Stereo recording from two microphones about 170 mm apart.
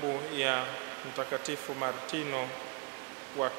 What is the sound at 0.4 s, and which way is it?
Speech, 15° right (ahead or behind).